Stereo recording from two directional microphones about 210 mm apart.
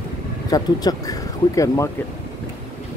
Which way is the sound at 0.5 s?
15° left (ahead or behind).